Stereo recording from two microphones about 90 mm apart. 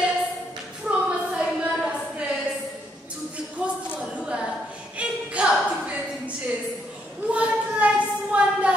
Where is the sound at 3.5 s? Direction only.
10° right (ahead or behind).